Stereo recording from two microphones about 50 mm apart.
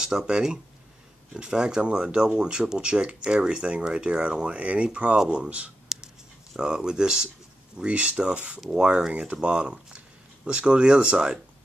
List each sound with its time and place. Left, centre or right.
0.0 s speech: centre
5.9 s writing: centre
6.6 s speech: centre